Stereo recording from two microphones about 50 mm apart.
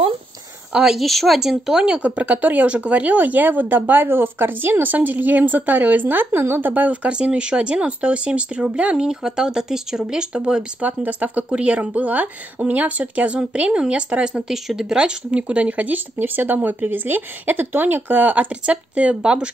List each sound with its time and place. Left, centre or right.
0.9 s speech: centre
2.0 s a woman's voice: right
10.8 s a woman's voice: right
14.5 s a woman's voice: centre; by 16.0 s right
16.2 s speech: right
18.5 s a woman's voice: right